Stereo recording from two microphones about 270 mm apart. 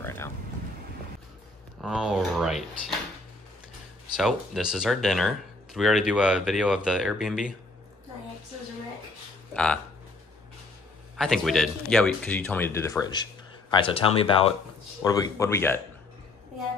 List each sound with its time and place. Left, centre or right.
0.0 s a sound: centre
1.8 s speech: centre
4.2 s speech: centre
9.5 s speech: centre
11.1 s speech: centre